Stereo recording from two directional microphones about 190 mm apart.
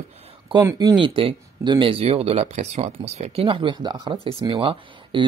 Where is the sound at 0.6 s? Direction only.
20° right (ahead or behind).